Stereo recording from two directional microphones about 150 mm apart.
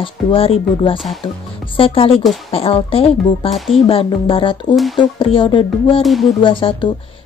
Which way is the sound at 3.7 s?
40° left (ahead or behind).